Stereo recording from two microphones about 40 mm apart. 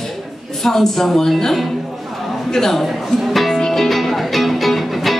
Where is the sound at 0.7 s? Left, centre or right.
Centre.